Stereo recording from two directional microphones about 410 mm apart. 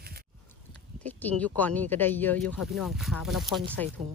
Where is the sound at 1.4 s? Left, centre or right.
Centre.